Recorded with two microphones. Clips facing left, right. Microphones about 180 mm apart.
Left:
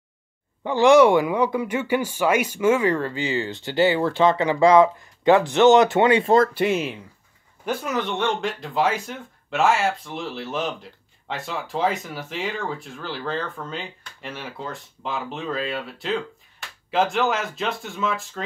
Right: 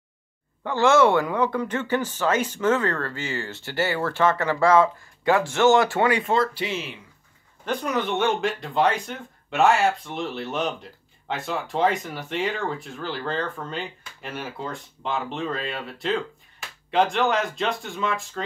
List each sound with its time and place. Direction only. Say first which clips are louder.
0.7 s speech: left 4 dB; 15° left (ahead or behind)
6.3 s speech: left 6 dB; 50° left (ahead or behind)
7.6 s speech: even; 5° left (ahead or behind)